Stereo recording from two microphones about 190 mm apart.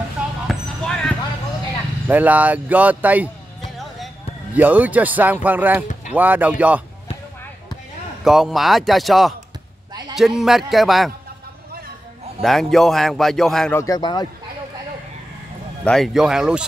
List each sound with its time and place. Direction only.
0.5 s basketball bounce: 5° left (ahead or behind)
2.0 s speech: 10° right (ahead or behind)
4.6 s speech: 10° right (ahead or behind)
8.2 s a man's voice: centre (ahead or behind)
12.4 s a man's voice: centre (ahead or behind)
13.7 s a man's voice: 20° left (ahead or behind)
15.8 s a man's voice: centre (ahead or behind)